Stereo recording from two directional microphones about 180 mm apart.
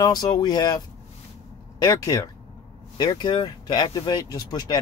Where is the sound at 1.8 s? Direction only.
20° left (ahead or behind).